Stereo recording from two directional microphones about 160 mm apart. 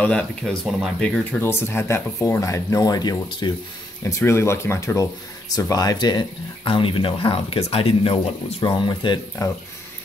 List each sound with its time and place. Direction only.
0.0 s speech: 5° left (ahead or behind)
1.4 s speech: 15° left (ahead or behind)
4.1 s speech: 15° left (ahead or behind)